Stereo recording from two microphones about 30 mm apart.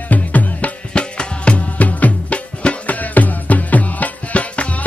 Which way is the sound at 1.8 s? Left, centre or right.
Left.